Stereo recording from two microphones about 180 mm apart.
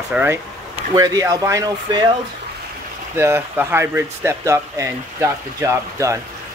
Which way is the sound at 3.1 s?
15° right (ahead or behind).